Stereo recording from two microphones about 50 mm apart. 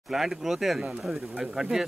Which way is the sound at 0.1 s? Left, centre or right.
Centre.